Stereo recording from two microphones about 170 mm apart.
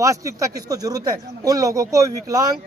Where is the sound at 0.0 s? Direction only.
20° right (ahead or behind).